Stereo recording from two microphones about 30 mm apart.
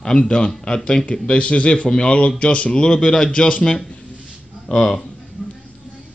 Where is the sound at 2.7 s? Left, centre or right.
Left.